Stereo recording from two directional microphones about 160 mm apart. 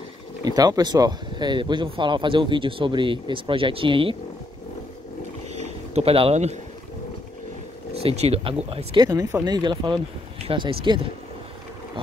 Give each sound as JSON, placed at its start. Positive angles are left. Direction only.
{"t": 0.5, "sound": "speech", "side_deg": -25}
{"t": 5.5, "sound": "a sound", "side_deg": -45}
{"t": 8.0, "sound": "speech", "side_deg": -40}